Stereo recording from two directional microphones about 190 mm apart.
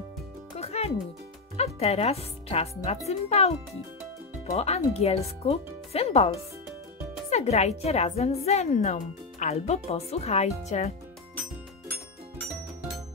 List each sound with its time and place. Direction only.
0.6 s music: 35° left (ahead or behind)
1.6 s a woman's voice: 35° left (ahead or behind)
4.6 s a woman's voice: 35° left (ahead or behind)